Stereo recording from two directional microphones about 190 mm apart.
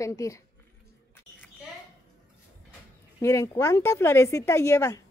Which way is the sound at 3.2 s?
15° left (ahead or behind).